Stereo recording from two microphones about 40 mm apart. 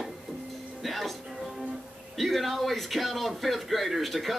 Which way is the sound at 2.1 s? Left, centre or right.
Centre.